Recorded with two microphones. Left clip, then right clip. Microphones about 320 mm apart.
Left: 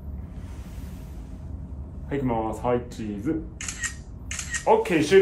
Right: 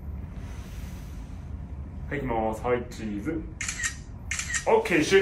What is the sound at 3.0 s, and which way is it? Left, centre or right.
Speech, left.